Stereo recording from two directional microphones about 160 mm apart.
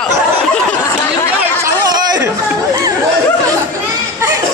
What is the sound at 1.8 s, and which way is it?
Chatter, 25° right (ahead or behind).